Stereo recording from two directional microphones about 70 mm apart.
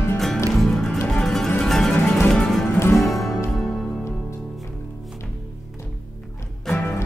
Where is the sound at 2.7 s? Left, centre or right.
Left.